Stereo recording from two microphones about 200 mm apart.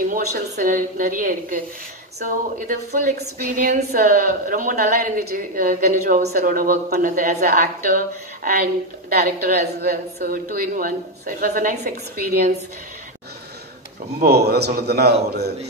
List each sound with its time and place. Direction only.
0.0 s a woman's voice: 45° right (ahead or behind)
14.2 s a woman's voice: 55° right (ahead or behind)